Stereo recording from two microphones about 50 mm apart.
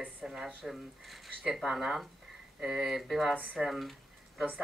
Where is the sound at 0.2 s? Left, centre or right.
Centre.